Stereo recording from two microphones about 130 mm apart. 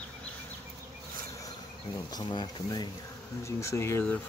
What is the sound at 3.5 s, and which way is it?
Speech, 20° left (ahead or behind).